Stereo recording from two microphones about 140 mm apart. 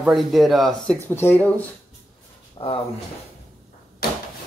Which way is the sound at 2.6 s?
35° left (ahead or behind).